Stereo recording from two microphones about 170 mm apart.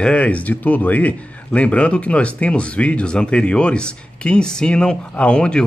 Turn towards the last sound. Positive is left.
turn(degrees=5)  # may be behind; listen again after turning